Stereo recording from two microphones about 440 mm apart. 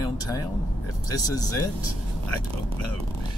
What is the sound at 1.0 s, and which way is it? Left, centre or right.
Speech, centre.